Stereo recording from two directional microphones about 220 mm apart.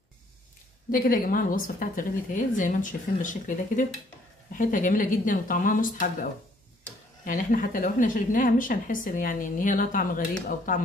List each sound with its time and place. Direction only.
0.9 s a woman's voice: 40° left (ahead or behind)
7.2 s a woman's voice: 40° left (ahead or behind)